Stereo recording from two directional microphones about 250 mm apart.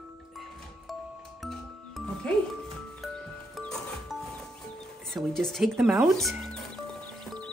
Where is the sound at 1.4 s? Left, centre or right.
Centre.